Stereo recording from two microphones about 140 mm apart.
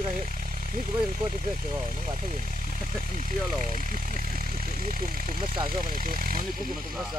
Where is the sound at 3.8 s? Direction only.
75° right (ahead or behind).